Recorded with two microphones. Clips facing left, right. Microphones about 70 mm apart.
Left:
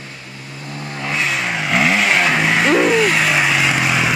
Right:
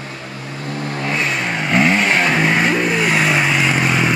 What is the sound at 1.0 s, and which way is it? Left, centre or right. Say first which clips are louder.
Vehicle: left 1 dB; centre.